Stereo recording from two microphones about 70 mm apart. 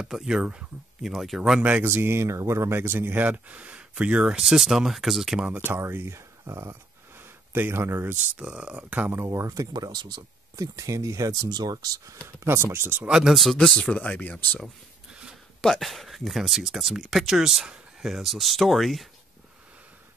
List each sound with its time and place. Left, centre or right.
0.0 s speech: centre
1.1 s speech: centre
1.8 s speech: right; by 5.4 s centre
5.7 s speech: right
8.4 s speech: centre
9.1 s speech: right
9.7 s speech: right
11.5 s speech: right
12.4 s speech: right
13.1 s speech: centre
13.6 s speech: centre
15.6 s speech: centre